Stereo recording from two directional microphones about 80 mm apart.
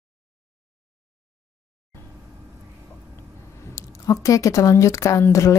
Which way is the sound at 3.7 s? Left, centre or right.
Left.